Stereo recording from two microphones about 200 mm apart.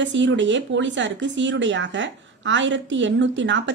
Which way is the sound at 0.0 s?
65° right (ahead or behind).